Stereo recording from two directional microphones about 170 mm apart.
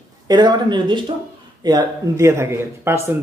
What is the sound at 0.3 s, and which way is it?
A man's voice, 25° right (ahead or behind).